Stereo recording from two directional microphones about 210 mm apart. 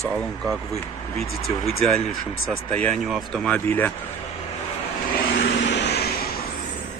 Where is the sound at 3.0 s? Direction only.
Centre (ahead or behind).